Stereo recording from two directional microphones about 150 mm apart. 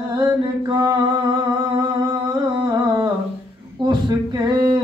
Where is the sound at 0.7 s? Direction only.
25° right (ahead or behind).